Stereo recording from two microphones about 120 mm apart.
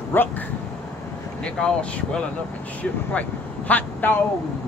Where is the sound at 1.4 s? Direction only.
10° left (ahead or behind).